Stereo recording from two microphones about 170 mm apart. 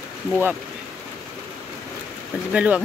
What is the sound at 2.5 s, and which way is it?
Speech, 5° right (ahead or behind).